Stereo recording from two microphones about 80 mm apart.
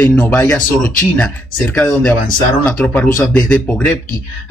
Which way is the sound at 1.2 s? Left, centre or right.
Centre.